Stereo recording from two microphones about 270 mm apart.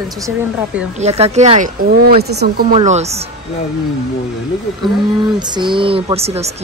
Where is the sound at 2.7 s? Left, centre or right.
Right.